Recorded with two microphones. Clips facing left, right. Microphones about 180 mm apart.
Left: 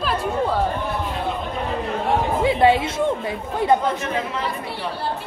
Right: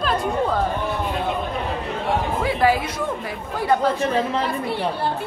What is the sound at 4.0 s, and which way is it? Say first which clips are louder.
Speech: right 4 dB; 35° right (ahead or behind).